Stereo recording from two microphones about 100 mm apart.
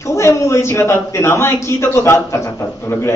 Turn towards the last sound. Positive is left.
turn(degrees=25)  # may be behind; listen again after turning